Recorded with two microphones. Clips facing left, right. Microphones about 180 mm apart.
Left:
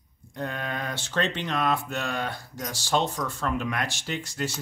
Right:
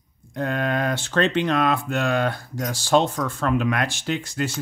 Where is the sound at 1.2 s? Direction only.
90° right.